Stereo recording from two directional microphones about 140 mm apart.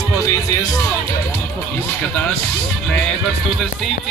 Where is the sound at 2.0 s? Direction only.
10° left (ahead or behind).